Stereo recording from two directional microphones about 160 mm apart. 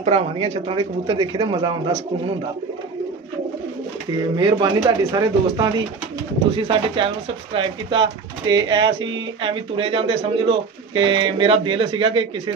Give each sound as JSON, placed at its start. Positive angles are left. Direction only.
{"t": 0.0, "sound": "speech", "side_deg": -45}
{"t": 4.4, "sound": "speech", "side_deg": -30}